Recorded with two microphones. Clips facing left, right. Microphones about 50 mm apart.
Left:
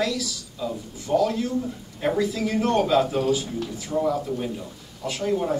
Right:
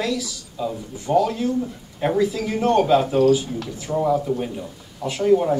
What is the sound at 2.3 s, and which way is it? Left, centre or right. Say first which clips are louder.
Speech: right 3 dB; right.